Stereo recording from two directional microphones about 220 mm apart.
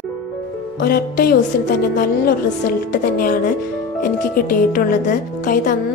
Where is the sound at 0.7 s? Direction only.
45° left (ahead or behind).